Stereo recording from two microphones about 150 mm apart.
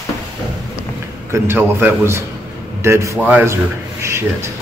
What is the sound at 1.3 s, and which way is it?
A man's voice, 15° right (ahead or behind).